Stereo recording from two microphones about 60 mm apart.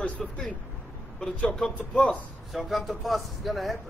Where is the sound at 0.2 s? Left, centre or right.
Centre.